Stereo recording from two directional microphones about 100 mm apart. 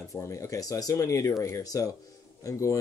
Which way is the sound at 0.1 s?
30° left (ahead or behind).